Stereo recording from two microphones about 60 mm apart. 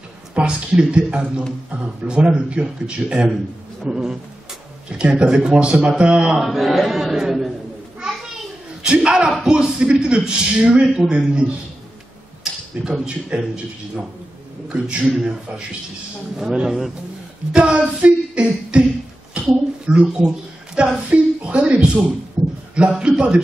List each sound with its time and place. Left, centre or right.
0.3 s speech: centre
6.4 s speech: centre
8.0 s children playing: centre
8.8 s speech: centre
12.8 s speech: centre
14.7 s speech: centre
16.3 s speech: centre
18.0 s beatboxing: centre
19.4 s a sound: right
19.9 s speech: centre
22.4 s a sound: centre
22.8 s speech: centre